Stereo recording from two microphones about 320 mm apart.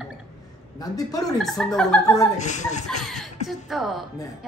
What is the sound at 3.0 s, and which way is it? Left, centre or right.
Speech, centre.